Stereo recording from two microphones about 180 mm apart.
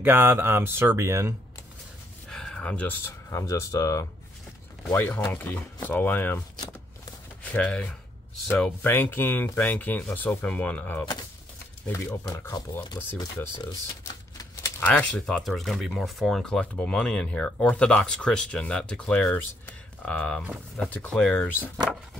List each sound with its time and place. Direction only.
0.0 s speech: 10° right (ahead or behind)
2.2 s speech: 5° left (ahead or behind)
14.3 s typewriter: 20° left (ahead or behind)
14.9 s speech: 5° left (ahead or behind)